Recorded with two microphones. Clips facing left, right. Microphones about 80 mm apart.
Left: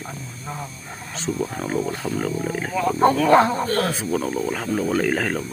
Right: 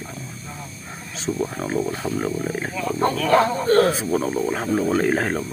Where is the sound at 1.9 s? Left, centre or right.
Centre.